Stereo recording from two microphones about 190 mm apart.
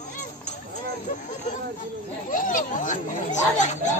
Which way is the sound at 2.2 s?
45° left (ahead or behind).